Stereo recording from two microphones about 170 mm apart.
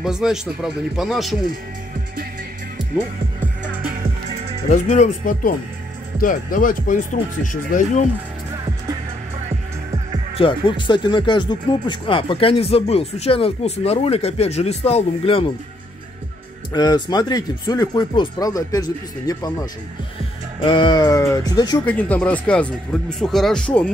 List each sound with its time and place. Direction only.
0.0 s speech: 5° right (ahead or behind)
4.6 s speech: 45° left (ahead or behind)
10.3 s speech: 30° left (ahead or behind)
16.7 s speech: 25° left (ahead or behind)
21.8 s speech: 10° left (ahead or behind)